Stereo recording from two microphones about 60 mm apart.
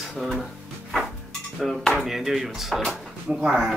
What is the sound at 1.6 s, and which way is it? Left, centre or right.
Speech, centre.